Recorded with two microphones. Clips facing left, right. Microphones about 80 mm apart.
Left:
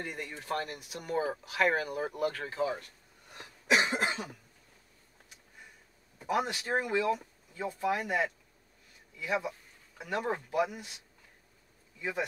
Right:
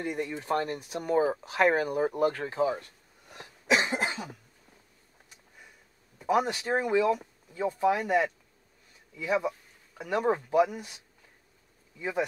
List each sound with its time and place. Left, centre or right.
0.0 s speech: right
3.3 s cough: right
6.3 s speech: right
8.0 s speech: centre
9.9 s speech: centre
10.2 s speech: right
12.0 s speech: right